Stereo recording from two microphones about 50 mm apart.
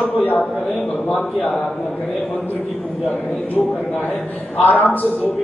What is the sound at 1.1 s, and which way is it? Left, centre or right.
Speech, left.